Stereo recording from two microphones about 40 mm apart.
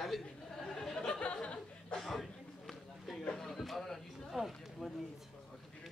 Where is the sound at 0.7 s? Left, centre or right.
Centre.